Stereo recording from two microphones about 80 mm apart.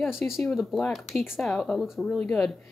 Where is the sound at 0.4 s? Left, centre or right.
Centre.